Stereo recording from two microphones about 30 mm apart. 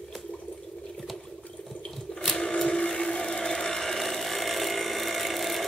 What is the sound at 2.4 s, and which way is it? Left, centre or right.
Printer, left.